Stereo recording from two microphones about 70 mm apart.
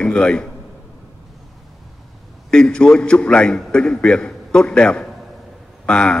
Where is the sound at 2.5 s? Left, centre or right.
Centre.